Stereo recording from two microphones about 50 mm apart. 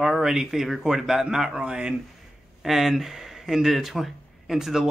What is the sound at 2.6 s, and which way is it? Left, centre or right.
Speech, centre.